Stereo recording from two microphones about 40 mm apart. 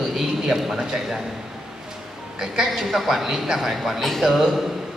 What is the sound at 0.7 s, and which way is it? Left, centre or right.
Speech, centre.